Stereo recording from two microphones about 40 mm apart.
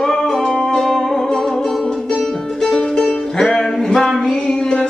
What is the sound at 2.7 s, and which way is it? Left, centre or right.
Music, centre.